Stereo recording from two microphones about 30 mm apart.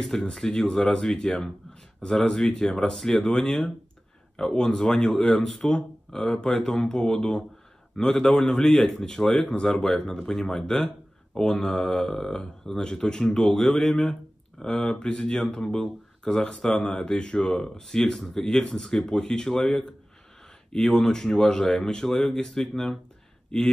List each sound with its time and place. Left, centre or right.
0.0 s speech: centre
14.6 s speech: left
20.7 s speech: centre